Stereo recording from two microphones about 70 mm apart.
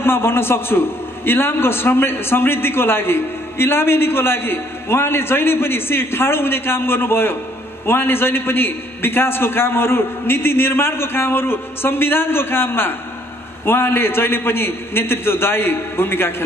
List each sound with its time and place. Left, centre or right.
0.0 s a man's voice: left